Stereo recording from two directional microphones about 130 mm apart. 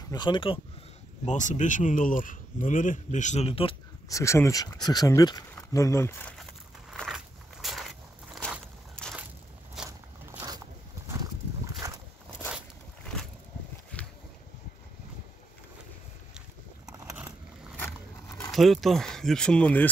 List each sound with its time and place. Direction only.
0.1 s speech: 35° left (ahead or behind)
1.2 s speech: 70° left (ahead or behind); by 3.7 s 50° left (ahead or behind)
4.1 s speech: 20° left (ahead or behind)
6.9 s walk: centre (ahead or behind)
9.0 s a sound: 5° left (ahead or behind)
9.8 s walk: 25° right (ahead or behind)
11.8 s a sound: 25° right (ahead or behind)
17.0 s boat: 15° right (ahead or behind)
18.5 s speech: centre (ahead or behind)